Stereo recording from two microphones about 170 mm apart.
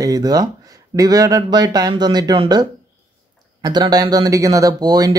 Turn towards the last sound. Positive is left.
turn(degrees=-20)  # may be behind; listen again after turning